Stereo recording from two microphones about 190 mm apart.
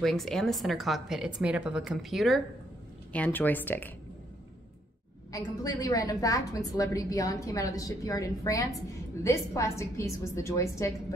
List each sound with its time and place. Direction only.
0.0 s a woman's voice: centre (ahead or behind)
5.3 s a woman's voice: 20° left (ahead or behind)